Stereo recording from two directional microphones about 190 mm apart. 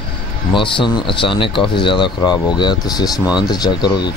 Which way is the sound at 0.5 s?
25° left (ahead or behind).